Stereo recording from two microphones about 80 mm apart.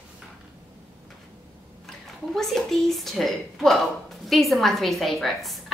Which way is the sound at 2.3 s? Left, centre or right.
Centre.